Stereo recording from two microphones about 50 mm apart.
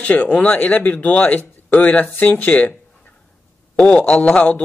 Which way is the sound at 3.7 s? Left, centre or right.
Left.